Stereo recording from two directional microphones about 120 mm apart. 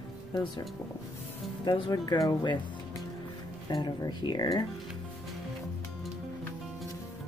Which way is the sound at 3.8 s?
40° left (ahead or behind).